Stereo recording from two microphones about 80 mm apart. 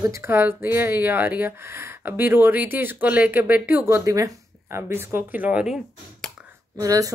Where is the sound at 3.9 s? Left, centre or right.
Right.